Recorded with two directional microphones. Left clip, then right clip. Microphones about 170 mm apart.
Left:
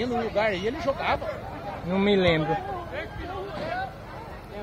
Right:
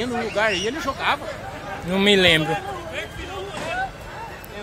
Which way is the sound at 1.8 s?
20° right (ahead or behind).